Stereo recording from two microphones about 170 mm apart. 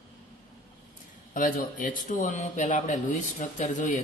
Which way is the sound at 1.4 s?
55° left (ahead or behind).